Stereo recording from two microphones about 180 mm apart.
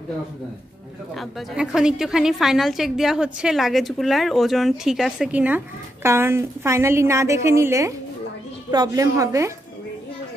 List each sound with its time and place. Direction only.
1.1 s a woman's voice: 5° right (ahead or behind); by 9.5 s 20° right (ahead or behind)